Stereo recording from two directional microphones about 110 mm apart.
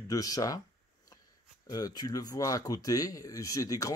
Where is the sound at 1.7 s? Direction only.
35° left (ahead or behind).